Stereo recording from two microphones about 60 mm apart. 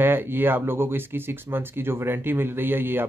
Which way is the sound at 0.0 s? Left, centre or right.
Right.